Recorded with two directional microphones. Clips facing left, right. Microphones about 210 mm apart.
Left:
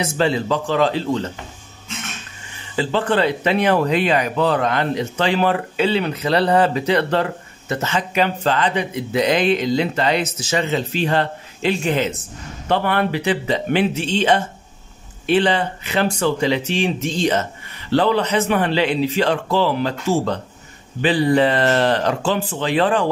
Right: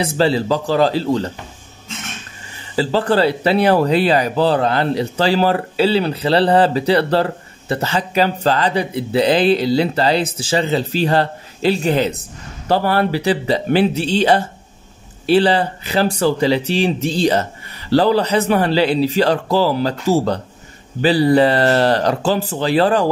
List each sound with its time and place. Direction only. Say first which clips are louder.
0.0 s speech: right 3 dB; 35° right (ahead or behind)
2.7 s speech: right 3 dB; 35° right (ahead or behind)